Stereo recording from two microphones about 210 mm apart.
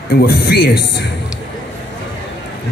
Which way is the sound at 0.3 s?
50° left (ahead or behind).